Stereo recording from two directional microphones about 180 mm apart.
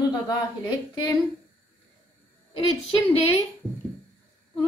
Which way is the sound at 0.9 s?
20° left (ahead or behind).